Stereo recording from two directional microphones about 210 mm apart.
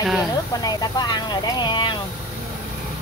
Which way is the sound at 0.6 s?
20° left (ahead or behind).